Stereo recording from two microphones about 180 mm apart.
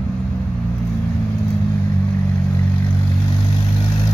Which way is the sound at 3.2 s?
25° left (ahead or behind).